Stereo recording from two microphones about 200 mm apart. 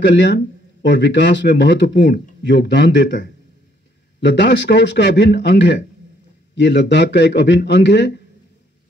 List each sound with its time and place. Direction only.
0.0 s speech: 60° left (ahead or behind)
4.2 s speech: 60° left (ahead or behind)